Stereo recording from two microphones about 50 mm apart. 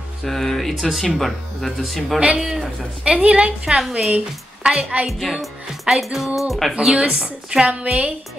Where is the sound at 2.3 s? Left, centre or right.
Centre.